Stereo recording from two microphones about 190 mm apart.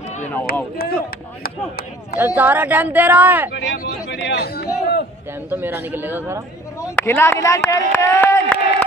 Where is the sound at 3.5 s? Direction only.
55° left (ahead or behind).